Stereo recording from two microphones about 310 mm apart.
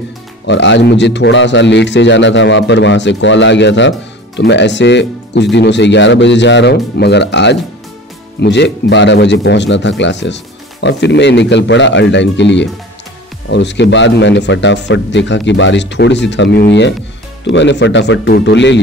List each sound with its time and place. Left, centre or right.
0.5 s a man's voice: left